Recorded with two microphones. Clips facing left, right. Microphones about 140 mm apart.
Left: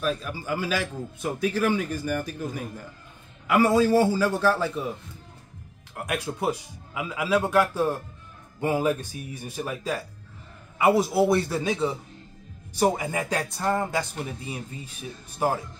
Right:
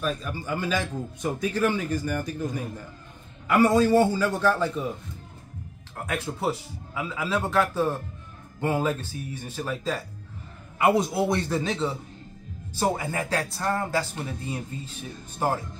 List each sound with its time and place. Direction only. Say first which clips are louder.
0.0 s a man's voice: left 1 dB; 5° left (ahead or behind)
6.0 s a man's voice: left 1 dB; 15° left (ahead or behind)
10.8 s a man's voice: left 2 dB; 5° left (ahead or behind)